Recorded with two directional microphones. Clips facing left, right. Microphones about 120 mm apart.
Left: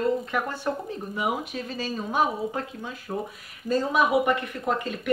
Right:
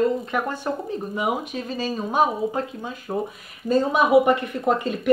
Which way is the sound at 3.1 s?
25° right (ahead or behind).